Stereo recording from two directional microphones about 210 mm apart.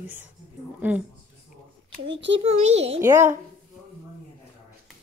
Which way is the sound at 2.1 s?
60° right (ahead or behind).